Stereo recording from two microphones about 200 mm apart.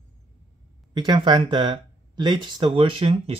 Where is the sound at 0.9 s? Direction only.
20° right (ahead or behind).